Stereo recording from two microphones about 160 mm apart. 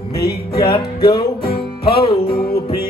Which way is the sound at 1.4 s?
75° left (ahead or behind).